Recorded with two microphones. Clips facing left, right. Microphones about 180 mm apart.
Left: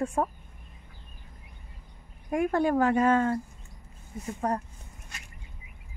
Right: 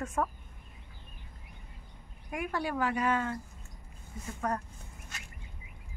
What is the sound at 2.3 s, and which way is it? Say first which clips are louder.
Speech: left 9 dB; 45° left (ahead or behind).